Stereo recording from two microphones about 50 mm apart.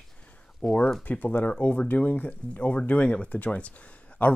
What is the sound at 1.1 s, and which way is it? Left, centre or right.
Speech, left.